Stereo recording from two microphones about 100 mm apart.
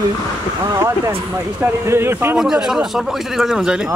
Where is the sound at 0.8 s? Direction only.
25° right (ahead or behind).